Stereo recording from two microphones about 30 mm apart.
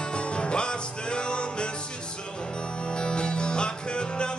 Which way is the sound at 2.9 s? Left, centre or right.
Left.